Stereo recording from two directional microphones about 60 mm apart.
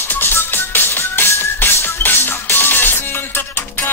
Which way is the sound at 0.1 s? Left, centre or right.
Left.